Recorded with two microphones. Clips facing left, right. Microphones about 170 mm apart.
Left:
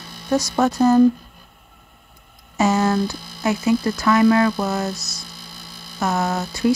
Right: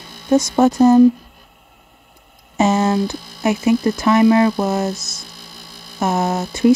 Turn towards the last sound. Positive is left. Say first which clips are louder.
# right 5 dB
turn(degrees=-25)  # may be behind; listen again after turning